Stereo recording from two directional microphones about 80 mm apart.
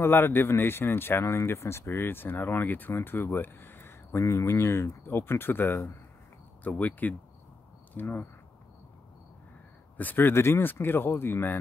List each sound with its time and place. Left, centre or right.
0.0 s speech: left
9.9 s speech: left